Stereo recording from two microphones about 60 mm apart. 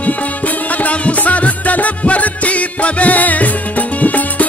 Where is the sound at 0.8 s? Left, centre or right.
Left.